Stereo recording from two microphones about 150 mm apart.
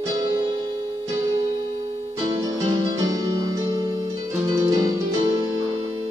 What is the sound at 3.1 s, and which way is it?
Music, 25° right (ahead or behind).